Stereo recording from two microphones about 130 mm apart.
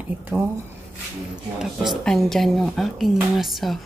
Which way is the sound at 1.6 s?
Centre (ahead or behind).